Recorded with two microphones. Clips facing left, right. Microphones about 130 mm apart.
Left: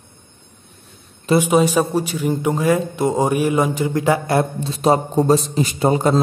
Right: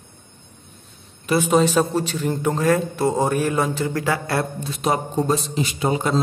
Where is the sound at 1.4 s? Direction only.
10° left (ahead or behind).